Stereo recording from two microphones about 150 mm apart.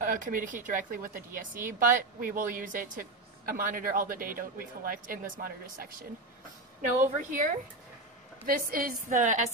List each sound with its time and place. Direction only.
0.0 s a woman's voice: 60° right (ahead or behind)
6.8 s a woman's voice: 60° right (ahead or behind)
8.5 s a woman's voice: 70° right (ahead or behind); by 9.5 s 55° right (ahead or behind)